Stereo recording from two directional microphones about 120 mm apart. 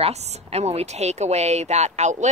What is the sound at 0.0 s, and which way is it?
A woman's voice, 60° right (ahead or behind).